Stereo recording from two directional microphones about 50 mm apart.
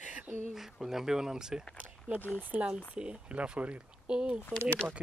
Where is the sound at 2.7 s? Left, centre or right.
Centre.